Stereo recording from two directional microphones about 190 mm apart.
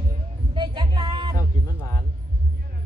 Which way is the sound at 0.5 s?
25° right (ahead or behind).